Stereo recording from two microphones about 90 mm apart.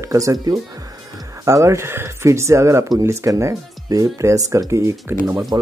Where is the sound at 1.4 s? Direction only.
35° right (ahead or behind).